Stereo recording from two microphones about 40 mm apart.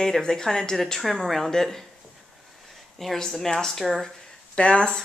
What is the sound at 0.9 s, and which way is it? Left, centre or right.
Speech, centre.